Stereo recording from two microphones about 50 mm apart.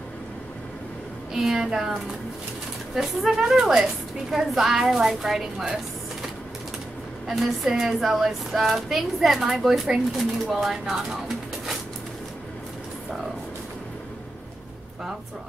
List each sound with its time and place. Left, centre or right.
1.3 s a woman's voice: centre
3.0 s a woman's voice: centre
7.2 s speech: centre